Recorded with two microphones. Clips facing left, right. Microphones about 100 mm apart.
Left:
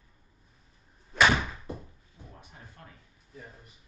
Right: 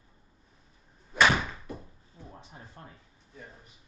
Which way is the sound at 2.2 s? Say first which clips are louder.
Right 2 dB; 30° right (ahead or behind).